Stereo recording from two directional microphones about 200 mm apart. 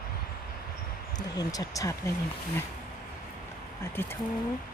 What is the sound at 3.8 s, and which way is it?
Speech, 10° left (ahead or behind).